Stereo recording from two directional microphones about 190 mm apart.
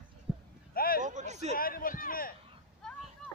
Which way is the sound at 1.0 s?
40° right (ahead or behind).